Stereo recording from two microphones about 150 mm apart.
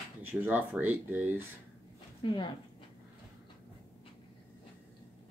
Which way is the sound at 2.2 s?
35° left (ahead or behind).